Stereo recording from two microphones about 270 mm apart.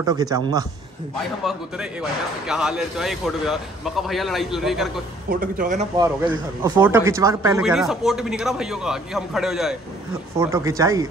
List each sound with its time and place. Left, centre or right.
0.0 s speech: centre
1.4 s speech: centre
5.3 s speech: right
5.9 s speech: centre